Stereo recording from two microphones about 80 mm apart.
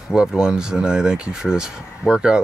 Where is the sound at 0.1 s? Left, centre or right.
Centre.